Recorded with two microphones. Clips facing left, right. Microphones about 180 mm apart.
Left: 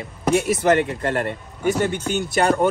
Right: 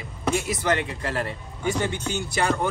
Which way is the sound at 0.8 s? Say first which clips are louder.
Left 6 dB; 55° left (ahead or behind).